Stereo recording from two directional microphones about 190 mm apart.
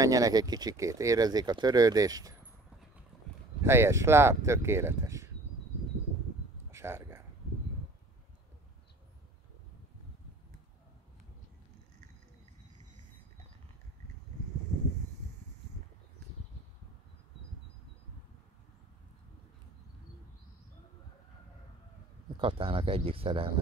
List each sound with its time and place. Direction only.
0.0 s speech: 20° right (ahead or behind)
3.6 s speech: 10° right (ahead or behind)
6.7 s a sound: 15° right (ahead or behind)
22.4 s speech: 30° right (ahead or behind)